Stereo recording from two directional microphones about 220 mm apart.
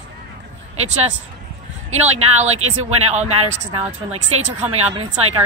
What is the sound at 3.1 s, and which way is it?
Speech, 30° right (ahead or behind).